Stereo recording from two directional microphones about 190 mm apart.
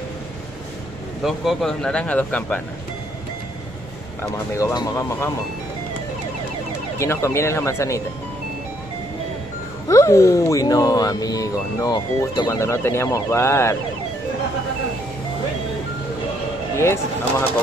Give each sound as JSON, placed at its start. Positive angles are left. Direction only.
{"t": 1.2, "sound": "speech", "side_deg": 0}
{"t": 4.6, "sound": "speech", "side_deg": 15}
{"t": 7.0, "sound": "speech", "side_deg": 15}
{"t": 9.8, "sound": "speech", "side_deg": 15}
{"t": 16.7, "sound": "speech", "side_deg": 15}